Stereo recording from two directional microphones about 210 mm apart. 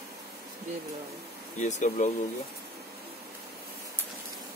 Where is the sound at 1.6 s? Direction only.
35° left (ahead or behind).